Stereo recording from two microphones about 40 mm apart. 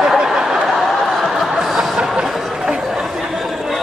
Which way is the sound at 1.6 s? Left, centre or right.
Centre.